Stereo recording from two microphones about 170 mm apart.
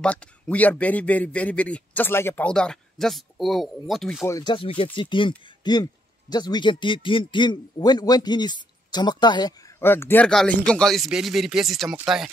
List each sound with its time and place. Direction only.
0.0 s a man's voice: 5° left (ahead or behind)
4.3 s a man's voice: 25° left (ahead or behind)
9.8 s speech: 15° left (ahead or behind); by 12.3 s centre (ahead or behind)